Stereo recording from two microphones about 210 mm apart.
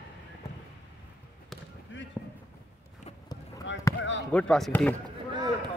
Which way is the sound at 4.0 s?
60° left (ahead or behind).